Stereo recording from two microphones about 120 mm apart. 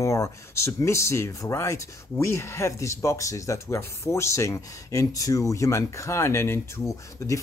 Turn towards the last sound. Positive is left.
turn(degrees=25)  # may be behind; listen again after turning